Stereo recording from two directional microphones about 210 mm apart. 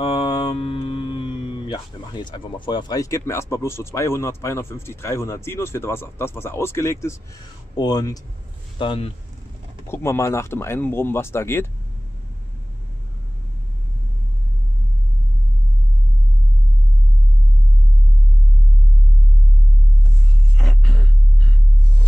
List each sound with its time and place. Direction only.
0.0 s speech: 25° left (ahead or behind)
9.8 s speech: 15° left (ahead or behind)
20.5 s a sound: centre (ahead or behind)